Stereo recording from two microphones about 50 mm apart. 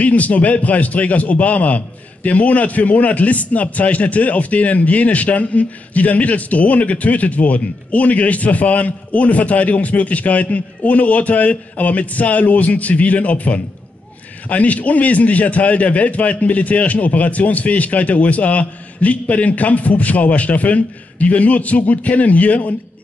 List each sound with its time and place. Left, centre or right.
0.0 s a man's voice: left